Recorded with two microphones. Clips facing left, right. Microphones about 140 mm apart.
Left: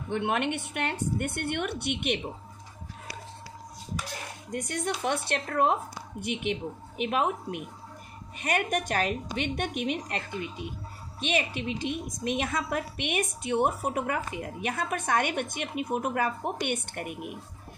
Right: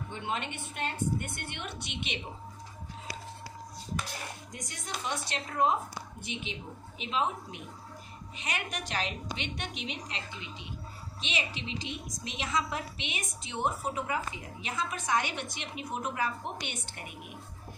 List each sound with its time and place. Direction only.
0.1 s a woman's voice: 65° left (ahead or behind)
4.5 s a woman's voice: 60° left (ahead or behind)